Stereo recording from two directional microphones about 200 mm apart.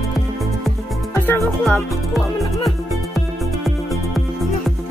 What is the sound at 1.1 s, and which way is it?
Music, 10° left (ahead or behind).